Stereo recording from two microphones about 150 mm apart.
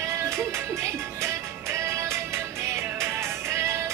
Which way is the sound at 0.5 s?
15° right (ahead or behind).